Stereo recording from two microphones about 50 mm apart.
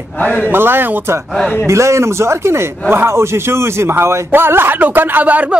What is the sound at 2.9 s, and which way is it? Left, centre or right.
A man's voice, right.